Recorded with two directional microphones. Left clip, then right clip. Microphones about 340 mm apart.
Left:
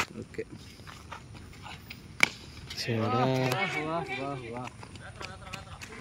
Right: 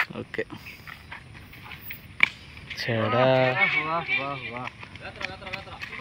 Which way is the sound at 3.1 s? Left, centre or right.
Centre.